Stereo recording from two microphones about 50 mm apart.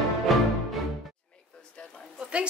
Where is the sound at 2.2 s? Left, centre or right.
Right.